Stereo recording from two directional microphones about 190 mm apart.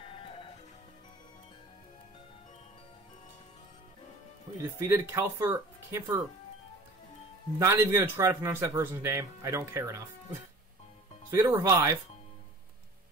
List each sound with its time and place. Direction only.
0.1 s music: 30° left (ahead or behind)
4.6 s speech: 15° right (ahead or behind)
7.5 s speech: 15° right (ahead or behind)